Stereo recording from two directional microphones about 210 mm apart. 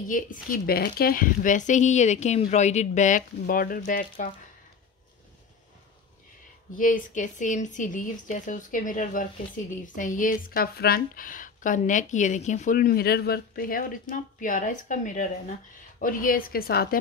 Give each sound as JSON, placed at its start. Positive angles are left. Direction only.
{"t": 0.1, "sound": "speech", "side_deg": 40}
{"t": 6.8, "sound": "a woman's voice", "side_deg": 40}